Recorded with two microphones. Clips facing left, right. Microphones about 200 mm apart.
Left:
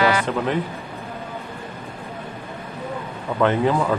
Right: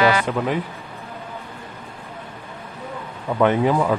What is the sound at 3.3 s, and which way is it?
Speech, 15° right (ahead or behind).